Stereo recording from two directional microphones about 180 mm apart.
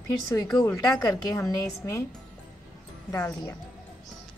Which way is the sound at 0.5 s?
5° left (ahead or behind).